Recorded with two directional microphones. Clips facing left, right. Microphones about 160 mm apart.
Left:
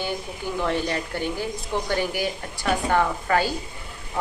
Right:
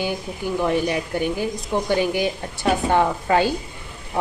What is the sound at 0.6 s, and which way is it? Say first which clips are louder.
Speech: right 4 dB; 15° right (ahead or behind).